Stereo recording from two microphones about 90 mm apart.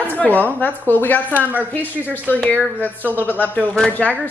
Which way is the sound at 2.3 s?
15° left (ahead or behind).